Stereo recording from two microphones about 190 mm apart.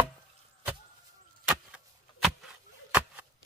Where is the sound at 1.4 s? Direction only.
5° right (ahead or behind).